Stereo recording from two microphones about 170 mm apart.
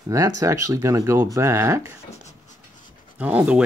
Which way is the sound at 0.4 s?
20° right (ahead or behind).